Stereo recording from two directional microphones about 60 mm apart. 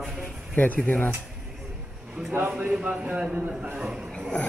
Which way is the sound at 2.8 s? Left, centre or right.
Right.